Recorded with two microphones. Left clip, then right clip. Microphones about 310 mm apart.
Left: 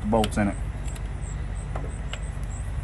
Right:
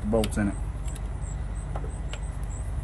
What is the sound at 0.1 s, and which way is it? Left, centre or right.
Speech, centre.